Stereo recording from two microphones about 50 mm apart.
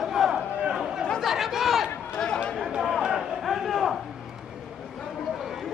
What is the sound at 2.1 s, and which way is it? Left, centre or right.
Chatter, centre.